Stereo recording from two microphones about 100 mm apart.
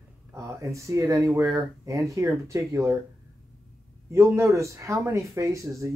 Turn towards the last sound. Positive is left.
turn(degrees=-30)  # may be behind; listen again after turning